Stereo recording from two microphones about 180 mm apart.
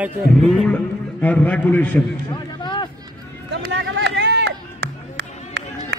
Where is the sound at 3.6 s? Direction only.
75° right (ahead or behind).